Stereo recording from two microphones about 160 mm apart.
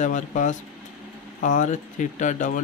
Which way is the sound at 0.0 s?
50° left (ahead or behind).